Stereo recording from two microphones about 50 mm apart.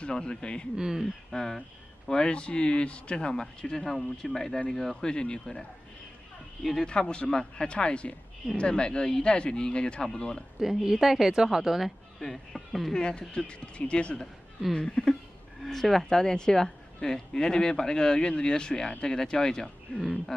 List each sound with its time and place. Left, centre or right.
0.0 s speech: centre
0.7 s a woman's voice: centre
1.3 s speech: centre
2.0 s speech: centre
5.1 s speech: centre
6.8 s speech: centre
10.6 s a woman's voice: centre
12.9 s speech: centre
15.6 s speech: centre
20.0 s speech: centre